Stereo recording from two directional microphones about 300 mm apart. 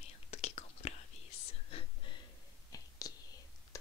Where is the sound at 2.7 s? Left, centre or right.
Centre.